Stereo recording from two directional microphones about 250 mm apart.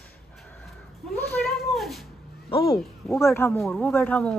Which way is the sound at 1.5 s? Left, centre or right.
Centre.